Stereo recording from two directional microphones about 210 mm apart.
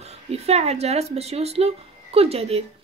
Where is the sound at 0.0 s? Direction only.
30° right (ahead or behind).